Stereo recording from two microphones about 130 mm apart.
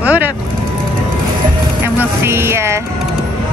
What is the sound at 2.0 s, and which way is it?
Speech, 20° right (ahead or behind).